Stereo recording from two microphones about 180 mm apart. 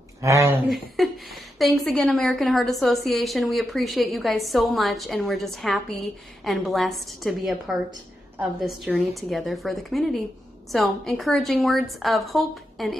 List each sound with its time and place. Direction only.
0.2 s speech: 15° right (ahead or behind)
0.9 s a sound: centre (ahead or behind)
1.9 s a woman's voice: 5° left (ahead or behind)